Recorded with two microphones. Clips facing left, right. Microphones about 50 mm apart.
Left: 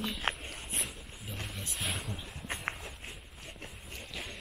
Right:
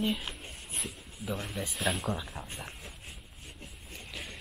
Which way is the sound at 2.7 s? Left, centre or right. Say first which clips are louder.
Left 10 dB; left.